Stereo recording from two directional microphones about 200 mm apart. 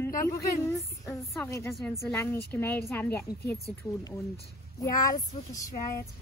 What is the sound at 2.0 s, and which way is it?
Speech, 10° left (ahead or behind).